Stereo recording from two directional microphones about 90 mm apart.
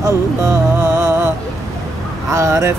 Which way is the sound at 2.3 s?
35° right (ahead or behind).